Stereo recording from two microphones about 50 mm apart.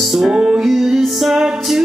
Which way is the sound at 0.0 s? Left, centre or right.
Centre.